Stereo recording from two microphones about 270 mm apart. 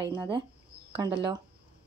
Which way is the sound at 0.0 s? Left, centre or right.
Centre.